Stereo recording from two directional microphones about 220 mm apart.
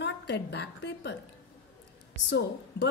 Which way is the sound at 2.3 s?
55° left (ahead or behind).